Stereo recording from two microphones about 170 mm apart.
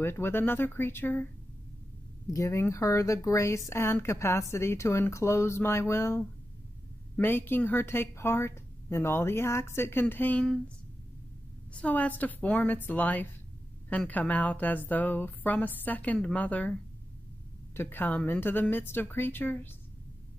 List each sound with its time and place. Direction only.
0.0 s speech: 15° left (ahead or behind)
2.3 s speech: 15° left (ahead or behind)
11.7 s speech: 10° left (ahead or behind)
17.7 s speech: 10° left (ahead or behind)